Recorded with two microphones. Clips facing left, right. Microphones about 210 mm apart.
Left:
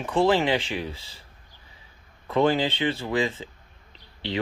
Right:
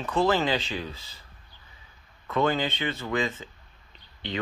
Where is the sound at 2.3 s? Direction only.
30° left (ahead or behind).